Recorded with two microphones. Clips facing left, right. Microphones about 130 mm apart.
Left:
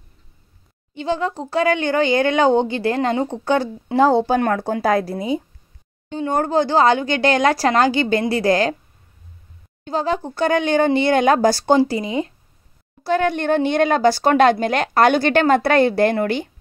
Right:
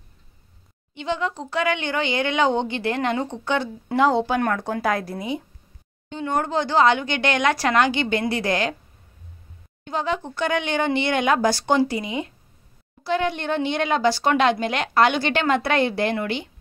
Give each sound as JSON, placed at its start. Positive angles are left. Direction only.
{"t": 0.9, "sound": "speech", "side_deg": 35}
{"t": 9.8, "sound": "speech", "side_deg": 35}
{"t": 13.0, "sound": "speech", "side_deg": 45}